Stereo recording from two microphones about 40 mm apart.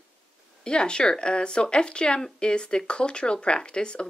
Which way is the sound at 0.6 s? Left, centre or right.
Left.